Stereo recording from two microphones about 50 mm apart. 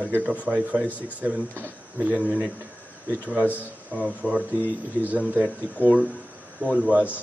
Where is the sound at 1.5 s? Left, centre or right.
Right.